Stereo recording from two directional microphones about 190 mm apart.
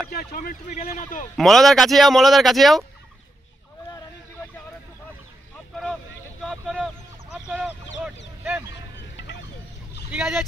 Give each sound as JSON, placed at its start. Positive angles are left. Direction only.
{"t": 0.1, "sound": "speech", "side_deg": 55}
{"t": 1.3, "sound": "speech", "side_deg": 0}
{"t": 6.4, "sound": "speech", "side_deg": 0}
{"t": 10.1, "sound": "speech", "side_deg": -5}